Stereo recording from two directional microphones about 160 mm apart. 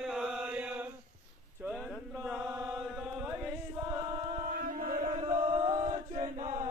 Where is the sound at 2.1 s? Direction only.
5° right (ahead or behind).